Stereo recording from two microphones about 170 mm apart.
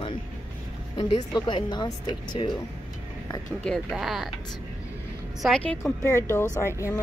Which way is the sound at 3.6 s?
Centre (ahead or behind).